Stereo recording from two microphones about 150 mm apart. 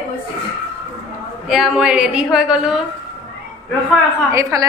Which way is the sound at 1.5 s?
5° right (ahead or behind).